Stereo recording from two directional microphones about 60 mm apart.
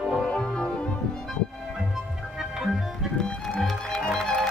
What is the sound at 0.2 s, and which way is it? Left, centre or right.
Music, centre.